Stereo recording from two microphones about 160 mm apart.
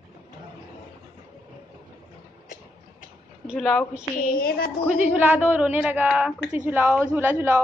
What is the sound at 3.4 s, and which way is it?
Speech, centre (ahead or behind).